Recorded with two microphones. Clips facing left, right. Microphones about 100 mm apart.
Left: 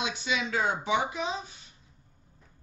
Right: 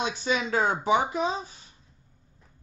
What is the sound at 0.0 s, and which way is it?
Speech, 40° right (ahead or behind).